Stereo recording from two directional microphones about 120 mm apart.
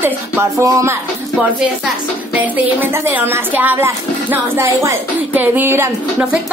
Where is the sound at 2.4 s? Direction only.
15° right (ahead or behind).